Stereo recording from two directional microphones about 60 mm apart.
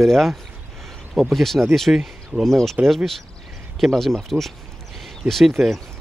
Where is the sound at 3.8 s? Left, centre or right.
Centre.